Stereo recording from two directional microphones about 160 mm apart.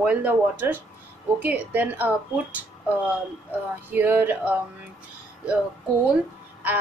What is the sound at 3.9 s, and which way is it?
Speech, 10° right (ahead or behind).